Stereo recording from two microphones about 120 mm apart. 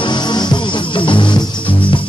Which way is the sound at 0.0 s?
40° left (ahead or behind).